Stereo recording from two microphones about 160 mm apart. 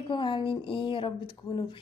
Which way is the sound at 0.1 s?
30° left (ahead or behind).